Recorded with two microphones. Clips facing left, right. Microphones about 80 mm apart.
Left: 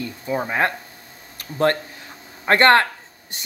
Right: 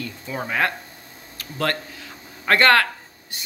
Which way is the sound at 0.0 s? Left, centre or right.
Left.